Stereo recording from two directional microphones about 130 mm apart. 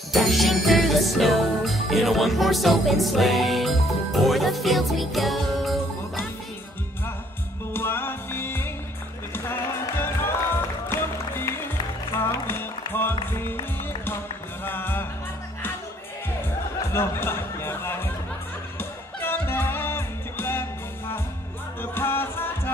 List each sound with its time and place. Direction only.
0.1 s music: centre (ahead or behind)
7.7 s music: 15° left (ahead or behind)
16.9 s music: 20° left (ahead or behind)
21.9 s music: 15° left (ahead or behind)